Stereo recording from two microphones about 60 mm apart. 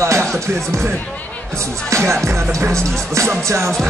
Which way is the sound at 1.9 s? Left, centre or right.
Right.